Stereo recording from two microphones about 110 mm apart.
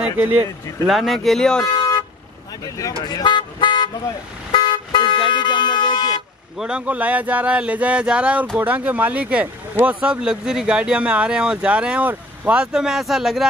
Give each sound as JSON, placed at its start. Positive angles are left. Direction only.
{"t": 0.0, "sound": "speech", "side_deg": -15}
{"t": 0.8, "sound": "speech", "side_deg": 0}
{"t": 3.0, "sound": "toot", "side_deg": 40}
{"t": 4.5, "sound": "car", "side_deg": 45}
{"t": 5.3, "sound": "a sound", "side_deg": 45}
{"t": 6.6, "sound": "speech", "side_deg": -10}